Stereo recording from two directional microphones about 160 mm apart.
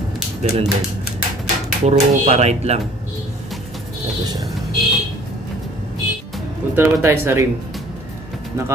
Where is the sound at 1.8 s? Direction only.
40° right (ahead or behind).